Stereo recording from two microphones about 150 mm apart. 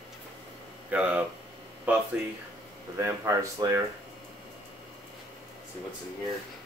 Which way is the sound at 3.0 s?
20° right (ahead or behind).